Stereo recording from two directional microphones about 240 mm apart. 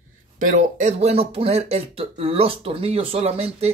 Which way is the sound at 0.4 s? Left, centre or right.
Right.